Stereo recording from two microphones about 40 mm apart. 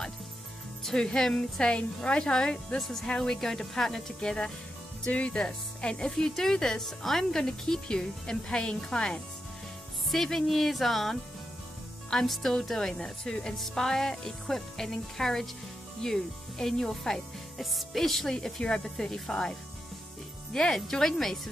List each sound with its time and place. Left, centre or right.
0.9 s speech: centre
1.6 s a woman's voice: left
2.8 s speech: centre
5.0 s a woman's voice: left
6.1 s speech: centre
10.0 s speech: centre
12.3 s speech: centre
18.3 s speech: centre
20.5 s speech: centre